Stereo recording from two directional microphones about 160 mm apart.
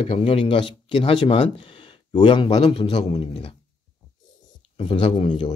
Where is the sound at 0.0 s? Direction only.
35° left (ahead or behind).